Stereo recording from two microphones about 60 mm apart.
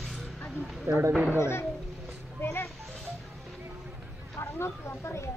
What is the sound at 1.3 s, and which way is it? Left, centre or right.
Speech, left.